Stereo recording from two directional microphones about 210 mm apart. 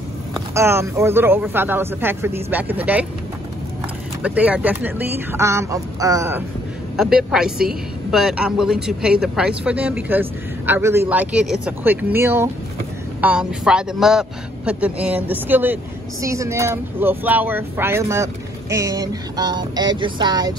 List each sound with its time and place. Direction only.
0.6 s a man's voice: 10° right (ahead or behind)
4.2 s a man's voice: 5° right (ahead or behind)
7.0 s a woman's voice: centre (ahead or behind); by 20.5 s 20° right (ahead or behind)